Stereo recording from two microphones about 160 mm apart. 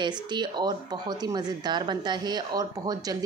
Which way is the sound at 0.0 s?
30° right (ahead or behind).